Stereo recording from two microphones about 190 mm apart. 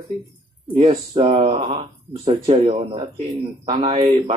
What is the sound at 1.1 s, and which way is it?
A man's voice, 25° right (ahead or behind).